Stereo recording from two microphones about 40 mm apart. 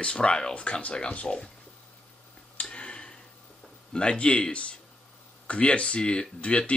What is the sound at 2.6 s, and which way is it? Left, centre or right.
Tick-tock, left.